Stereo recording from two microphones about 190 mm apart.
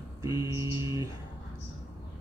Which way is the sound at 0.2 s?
20° right (ahead or behind).